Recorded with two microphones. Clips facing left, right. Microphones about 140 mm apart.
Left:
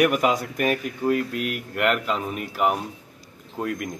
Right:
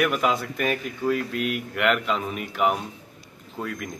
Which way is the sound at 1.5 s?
Centre (ahead or behind).